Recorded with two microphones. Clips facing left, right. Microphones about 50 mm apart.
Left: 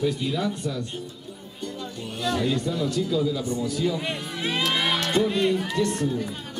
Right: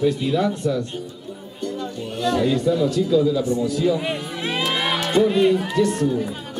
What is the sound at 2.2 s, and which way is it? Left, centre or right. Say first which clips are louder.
A man's voice: right 6 dB; centre.